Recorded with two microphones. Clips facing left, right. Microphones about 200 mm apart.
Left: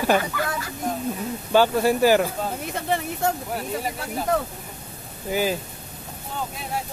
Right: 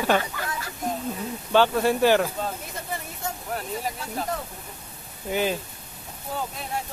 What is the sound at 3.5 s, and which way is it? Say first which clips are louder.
Speech: left 3 dB; 5° left (ahead or behind).